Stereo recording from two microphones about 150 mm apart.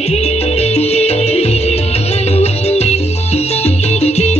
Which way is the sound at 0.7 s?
45° left (ahead or behind).